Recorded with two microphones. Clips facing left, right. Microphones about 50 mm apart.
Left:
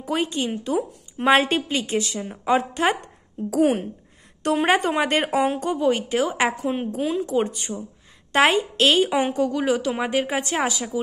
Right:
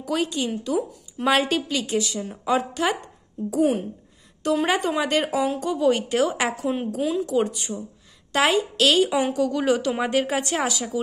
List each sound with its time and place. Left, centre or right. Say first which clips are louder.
0.0 s a woman's voice: even; left
3.4 s a woman's voice: left 1 dB; left
4.4 s a woman's voice: left 2 dB; left
5.8 s a woman's voice: right 2 dB; centre
7.2 s a woman's voice: even; left
9.5 s a woman's voice: even; centre